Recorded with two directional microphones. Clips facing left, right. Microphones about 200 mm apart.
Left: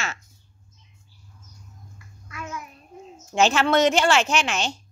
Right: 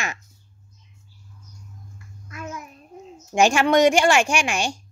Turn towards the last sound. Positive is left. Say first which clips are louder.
# right 1 dB
turn(degrees=-10)  # may be behind; listen again after turning